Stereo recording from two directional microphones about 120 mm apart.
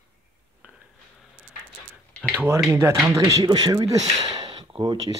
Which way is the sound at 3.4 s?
35° right (ahead or behind).